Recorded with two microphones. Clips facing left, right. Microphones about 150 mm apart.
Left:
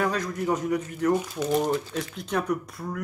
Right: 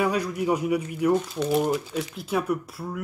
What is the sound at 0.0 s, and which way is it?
A man's voice, 10° right (ahead or behind).